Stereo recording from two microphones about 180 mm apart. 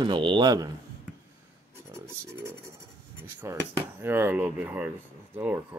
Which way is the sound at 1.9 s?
15° right (ahead or behind).